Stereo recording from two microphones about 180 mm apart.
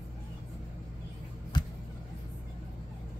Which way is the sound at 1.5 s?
25° left (ahead or behind).